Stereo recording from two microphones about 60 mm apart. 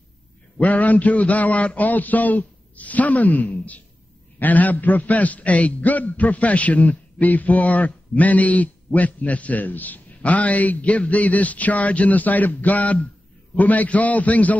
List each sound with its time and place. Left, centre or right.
0.6 s a man's voice: left